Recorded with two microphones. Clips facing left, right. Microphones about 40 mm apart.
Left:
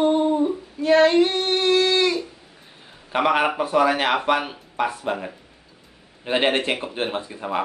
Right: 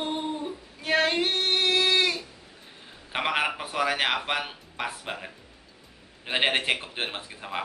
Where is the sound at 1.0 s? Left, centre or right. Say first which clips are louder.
Left 7 dB; centre.